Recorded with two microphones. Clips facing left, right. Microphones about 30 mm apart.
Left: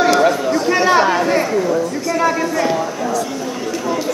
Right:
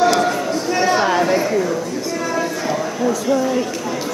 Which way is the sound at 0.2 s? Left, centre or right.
Left.